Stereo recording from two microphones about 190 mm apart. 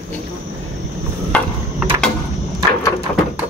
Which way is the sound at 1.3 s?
5° left (ahead or behind).